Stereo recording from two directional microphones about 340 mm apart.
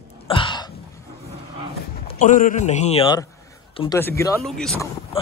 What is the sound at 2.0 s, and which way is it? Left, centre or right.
A man's voice, left.